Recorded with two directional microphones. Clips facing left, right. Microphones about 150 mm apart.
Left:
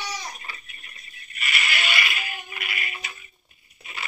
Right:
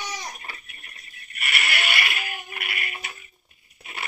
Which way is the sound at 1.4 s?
65° right (ahead or behind).